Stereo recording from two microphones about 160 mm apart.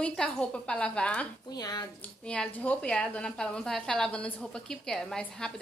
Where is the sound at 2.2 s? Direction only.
10° left (ahead or behind).